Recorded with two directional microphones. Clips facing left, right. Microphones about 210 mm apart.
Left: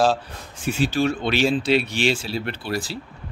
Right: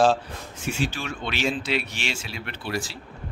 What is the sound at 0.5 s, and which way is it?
Speech, 35° left (ahead or behind).